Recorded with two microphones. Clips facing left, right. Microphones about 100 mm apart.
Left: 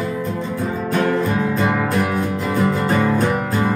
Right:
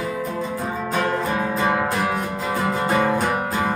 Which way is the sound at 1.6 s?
10° right (ahead or behind).